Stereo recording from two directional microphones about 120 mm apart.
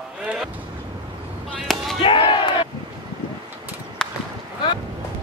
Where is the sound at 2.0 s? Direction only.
45° left (ahead or behind).